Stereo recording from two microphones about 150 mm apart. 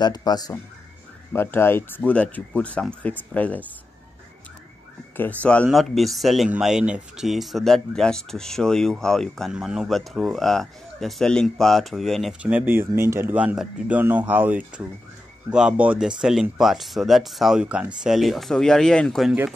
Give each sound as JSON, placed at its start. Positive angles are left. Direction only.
{"t": 0.0, "sound": "speech", "side_deg": 25}
{"t": 1.3, "sound": "speech", "side_deg": 15}
{"t": 5.1, "sound": "speech", "side_deg": 10}